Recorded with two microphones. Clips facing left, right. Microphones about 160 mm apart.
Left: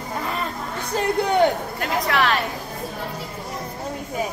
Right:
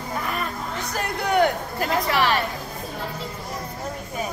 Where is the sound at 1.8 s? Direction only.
Centre (ahead or behind).